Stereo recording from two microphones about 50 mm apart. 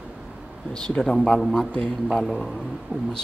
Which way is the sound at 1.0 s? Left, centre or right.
Centre.